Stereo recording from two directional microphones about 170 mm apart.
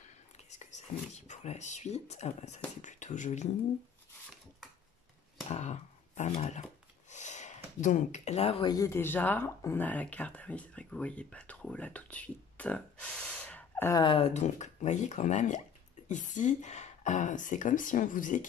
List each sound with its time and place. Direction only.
0.5 s speech: 45° left (ahead or behind)
5.5 s a sound: 45° left (ahead or behind)
8.7 s speech: 15° left (ahead or behind)
13.3 s gasp: 5° left (ahead or behind)
14.0 s speech: 35° left (ahead or behind); by 18.4 s 50° left (ahead or behind)